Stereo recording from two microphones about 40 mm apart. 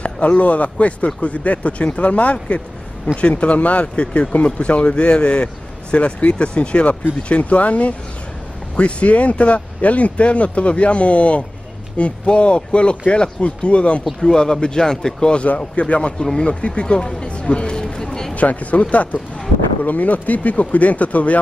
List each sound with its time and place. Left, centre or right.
0.0 s speech: left
14.2 s speech: centre
15.4 s speech: left; by 18.3 s centre
18.3 s speech: left